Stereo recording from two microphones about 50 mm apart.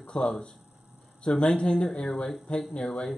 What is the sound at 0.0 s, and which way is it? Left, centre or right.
Speech, centre.